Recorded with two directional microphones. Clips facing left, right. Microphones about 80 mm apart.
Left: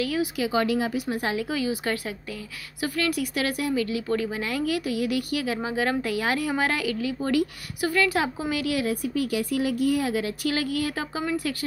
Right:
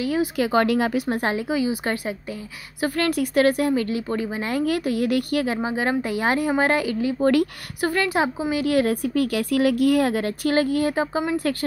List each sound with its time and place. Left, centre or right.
0.0 s speech: right
0.4 s speech: right
1.0 s speech: right
1.4 s a woman's voice: right
2.9 s speech: right
4.1 s speech: right
5.6 s speech: right
8.4 s a woman's voice: right
8.6 s speech: right